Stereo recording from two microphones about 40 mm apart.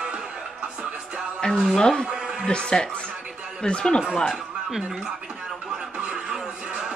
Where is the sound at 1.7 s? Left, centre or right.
Centre.